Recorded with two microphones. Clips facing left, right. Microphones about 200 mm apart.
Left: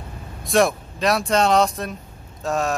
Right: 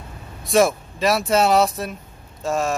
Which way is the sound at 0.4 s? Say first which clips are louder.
Right 1 dB; centre (ahead or behind).